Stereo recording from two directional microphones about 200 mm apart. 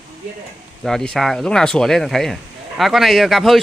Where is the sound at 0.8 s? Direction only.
5° left (ahead or behind).